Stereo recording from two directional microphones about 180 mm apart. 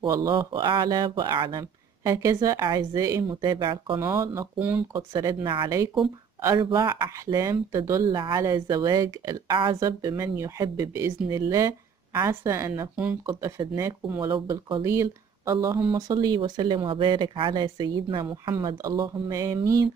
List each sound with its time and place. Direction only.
0.0 s speech: 20° right (ahead or behind)
4.9 s speech: 25° right (ahead or behind)